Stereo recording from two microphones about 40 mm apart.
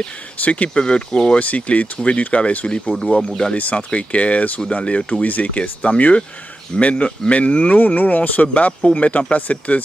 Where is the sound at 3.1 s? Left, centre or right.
Centre.